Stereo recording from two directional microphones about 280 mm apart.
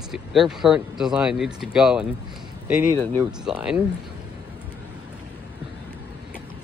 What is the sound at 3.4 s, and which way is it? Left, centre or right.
Speech, centre.